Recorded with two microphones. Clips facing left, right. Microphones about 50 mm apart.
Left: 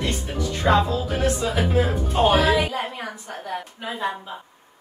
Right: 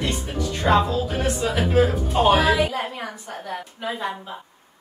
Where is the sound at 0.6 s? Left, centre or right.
Centre.